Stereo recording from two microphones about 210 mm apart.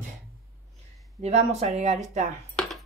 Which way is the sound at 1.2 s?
30° right (ahead or behind).